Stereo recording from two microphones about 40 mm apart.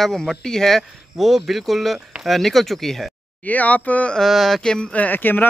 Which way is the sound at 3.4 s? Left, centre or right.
Left.